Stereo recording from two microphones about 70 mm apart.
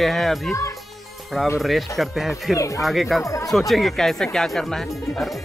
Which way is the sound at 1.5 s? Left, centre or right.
Centre.